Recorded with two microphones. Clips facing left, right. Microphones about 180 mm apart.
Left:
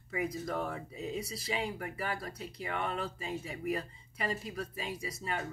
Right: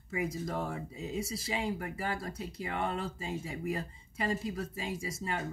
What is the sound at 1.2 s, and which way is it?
Speech, 25° right (ahead or behind).